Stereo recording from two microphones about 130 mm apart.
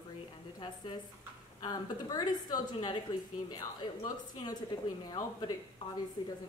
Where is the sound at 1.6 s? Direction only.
30° left (ahead or behind).